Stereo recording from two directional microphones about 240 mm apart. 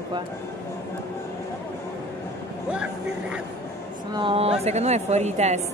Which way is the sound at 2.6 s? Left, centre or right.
Centre.